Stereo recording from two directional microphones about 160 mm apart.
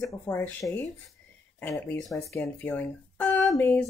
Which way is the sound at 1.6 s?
15° left (ahead or behind).